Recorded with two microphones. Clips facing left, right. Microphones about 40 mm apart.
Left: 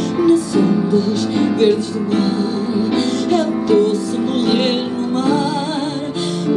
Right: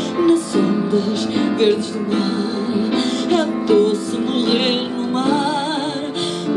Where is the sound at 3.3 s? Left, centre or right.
Right.